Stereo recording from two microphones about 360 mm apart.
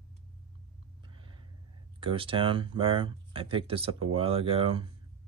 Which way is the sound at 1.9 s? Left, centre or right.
Centre.